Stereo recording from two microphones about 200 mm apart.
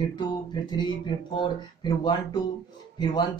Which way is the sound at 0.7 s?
20° left (ahead or behind).